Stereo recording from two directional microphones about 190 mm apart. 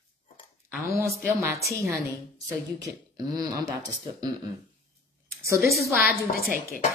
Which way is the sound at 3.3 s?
20° right (ahead or behind).